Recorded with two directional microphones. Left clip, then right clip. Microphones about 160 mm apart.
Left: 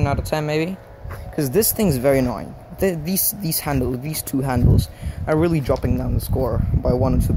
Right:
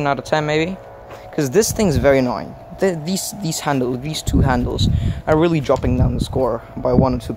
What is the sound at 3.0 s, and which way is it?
Speech, 70° right (ahead or behind).